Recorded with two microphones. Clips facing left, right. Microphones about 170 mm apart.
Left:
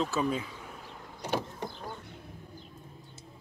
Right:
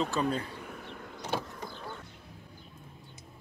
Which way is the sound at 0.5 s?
60° right (ahead or behind).